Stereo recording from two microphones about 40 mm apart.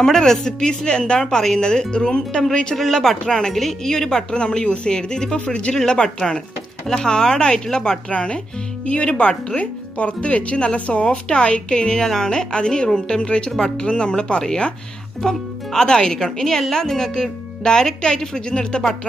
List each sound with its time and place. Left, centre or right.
0.0 s speech: centre
2.7 s speech: centre; by 5.8 s left
6.9 s speech: centre
8.1 s speech: left